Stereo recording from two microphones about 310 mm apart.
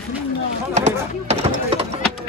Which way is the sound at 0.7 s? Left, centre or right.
Right.